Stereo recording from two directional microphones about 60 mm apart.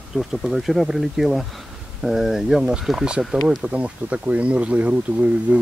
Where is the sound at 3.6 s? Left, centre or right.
Right.